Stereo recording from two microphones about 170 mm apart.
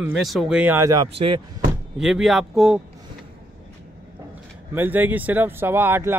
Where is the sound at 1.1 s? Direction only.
30° right (ahead or behind).